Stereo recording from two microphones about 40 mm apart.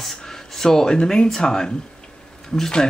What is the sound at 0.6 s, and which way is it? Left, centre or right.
Speech, centre.